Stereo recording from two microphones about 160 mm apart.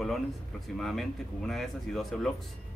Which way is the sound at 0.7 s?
Centre (ahead or behind).